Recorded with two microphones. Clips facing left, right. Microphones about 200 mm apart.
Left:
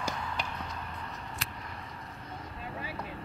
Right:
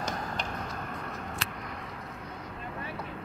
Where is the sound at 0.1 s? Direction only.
45° right (ahead or behind).